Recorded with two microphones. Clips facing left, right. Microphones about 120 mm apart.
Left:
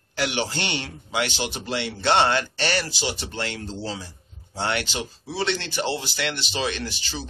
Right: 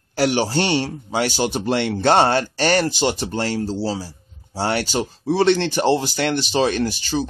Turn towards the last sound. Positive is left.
turn(degrees=-45)  # may be behind; listen again after turning